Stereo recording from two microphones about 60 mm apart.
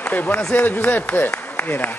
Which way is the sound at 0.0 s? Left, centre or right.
Left.